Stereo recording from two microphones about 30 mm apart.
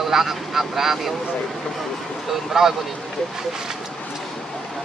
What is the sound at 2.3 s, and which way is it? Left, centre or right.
Speech, centre.